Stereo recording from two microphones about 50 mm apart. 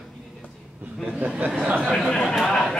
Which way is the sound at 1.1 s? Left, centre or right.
Centre.